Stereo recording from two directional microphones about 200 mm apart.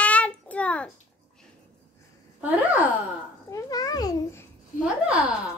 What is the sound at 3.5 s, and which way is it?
Babbling, 15° left (ahead or behind).